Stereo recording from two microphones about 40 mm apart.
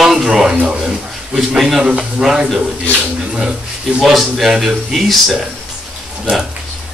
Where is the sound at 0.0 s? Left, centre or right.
Centre.